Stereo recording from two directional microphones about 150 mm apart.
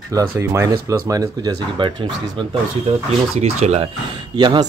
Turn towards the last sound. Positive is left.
turn(degrees=-30)  # may be behind; listen again after turning